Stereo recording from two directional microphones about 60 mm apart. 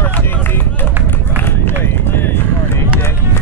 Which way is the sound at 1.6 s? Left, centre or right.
Left.